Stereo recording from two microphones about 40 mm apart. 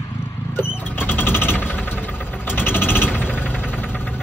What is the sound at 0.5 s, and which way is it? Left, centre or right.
Vehicle, left.